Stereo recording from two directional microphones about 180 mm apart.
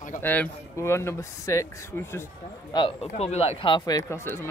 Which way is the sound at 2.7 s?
30° left (ahead or behind).